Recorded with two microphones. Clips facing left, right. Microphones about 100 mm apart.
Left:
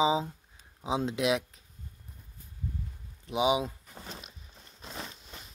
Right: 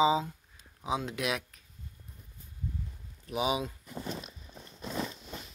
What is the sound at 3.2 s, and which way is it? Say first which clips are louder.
Speech: left 4 dB; 20° left (ahead or behind).